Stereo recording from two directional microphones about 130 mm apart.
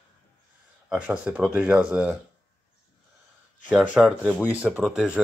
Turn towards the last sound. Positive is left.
turn(degrees=-5)  # may be behind; listen again after turning